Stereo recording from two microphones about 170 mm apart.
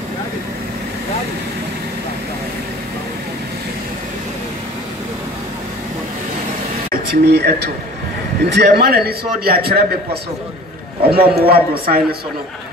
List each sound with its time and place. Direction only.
6.9 s a man's voice: 70° right (ahead or behind)
11.1 s a man's voice: 65° right (ahead or behind)